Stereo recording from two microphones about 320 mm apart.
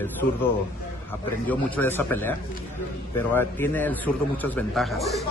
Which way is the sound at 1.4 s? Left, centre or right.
Centre.